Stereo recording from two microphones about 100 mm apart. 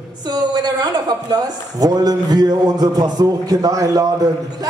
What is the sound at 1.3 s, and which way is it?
A man's voice, 40° right (ahead or behind).